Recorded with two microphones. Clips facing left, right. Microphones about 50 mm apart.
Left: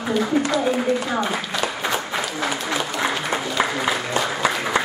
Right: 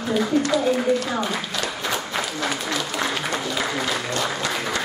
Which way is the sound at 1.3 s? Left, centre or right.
Centre.